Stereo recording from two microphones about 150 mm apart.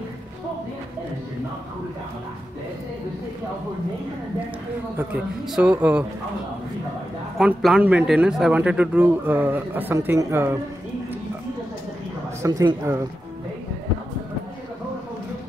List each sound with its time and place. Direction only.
4.9 s speech: 10° right (ahead or behind)
7.3 s speech: 5° right (ahead or behind)
12.4 s speech: 20° right (ahead or behind)